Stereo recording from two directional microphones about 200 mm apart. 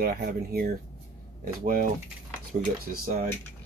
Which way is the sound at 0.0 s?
50° right (ahead or behind).